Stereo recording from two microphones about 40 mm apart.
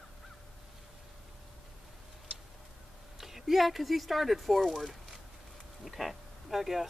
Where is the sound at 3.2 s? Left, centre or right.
Centre.